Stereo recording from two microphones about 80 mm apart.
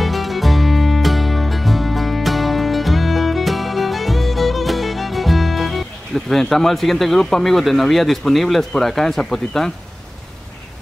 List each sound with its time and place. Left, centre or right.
0.0 s music: centre